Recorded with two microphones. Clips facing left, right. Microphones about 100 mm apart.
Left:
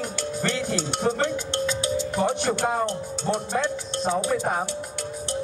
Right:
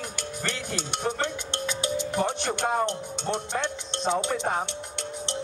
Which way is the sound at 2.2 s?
15° left (ahead or behind).